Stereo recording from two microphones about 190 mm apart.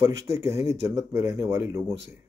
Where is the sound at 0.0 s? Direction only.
15° right (ahead or behind).